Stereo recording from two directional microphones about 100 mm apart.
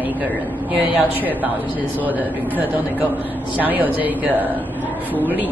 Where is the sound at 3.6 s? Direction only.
15° right (ahead or behind).